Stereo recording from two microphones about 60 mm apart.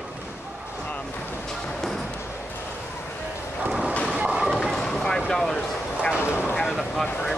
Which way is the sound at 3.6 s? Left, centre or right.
Centre.